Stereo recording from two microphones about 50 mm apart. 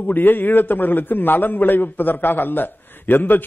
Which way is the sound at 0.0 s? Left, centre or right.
Left.